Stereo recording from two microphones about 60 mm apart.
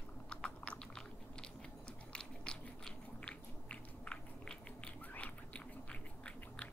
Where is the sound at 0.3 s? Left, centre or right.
Centre.